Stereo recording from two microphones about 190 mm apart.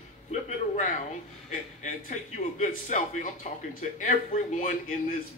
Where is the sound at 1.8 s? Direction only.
40° left (ahead or behind).